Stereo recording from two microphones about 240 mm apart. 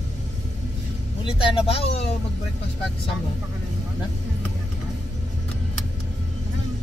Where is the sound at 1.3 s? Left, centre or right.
Left.